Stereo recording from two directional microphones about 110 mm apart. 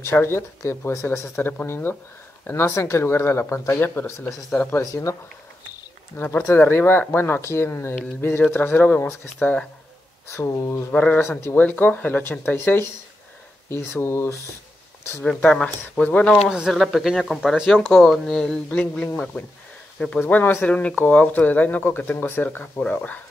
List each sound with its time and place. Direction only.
0.0 s speech: 20° left (ahead or behind)
6.1 s speech: 15° left (ahead or behind)
10.9 s speech: 15° left (ahead or behind)
15.2 s speech: 10° left (ahead or behind)
16.4 s speech: 10° right (ahead or behind); by 23.2 s 10° left (ahead or behind)